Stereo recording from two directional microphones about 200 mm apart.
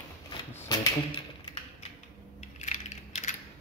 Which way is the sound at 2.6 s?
35° left (ahead or behind).